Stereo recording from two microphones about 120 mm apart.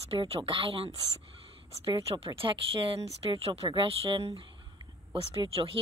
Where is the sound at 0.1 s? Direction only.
50° right (ahead or behind).